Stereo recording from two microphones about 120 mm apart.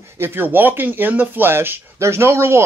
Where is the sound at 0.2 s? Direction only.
15° right (ahead or behind).